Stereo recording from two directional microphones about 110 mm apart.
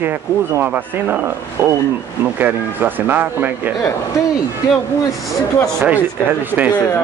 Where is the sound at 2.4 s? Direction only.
15° right (ahead or behind).